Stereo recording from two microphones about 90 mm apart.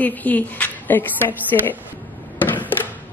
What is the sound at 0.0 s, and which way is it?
A woman's voice, 20° left (ahead or behind).